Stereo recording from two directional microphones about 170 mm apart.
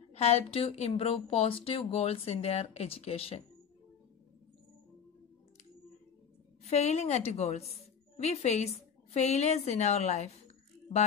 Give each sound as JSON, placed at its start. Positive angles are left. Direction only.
{"t": 0.1, "sound": "speech", "side_deg": 35}
{"t": 6.6, "sound": "a woman's voice", "side_deg": 40}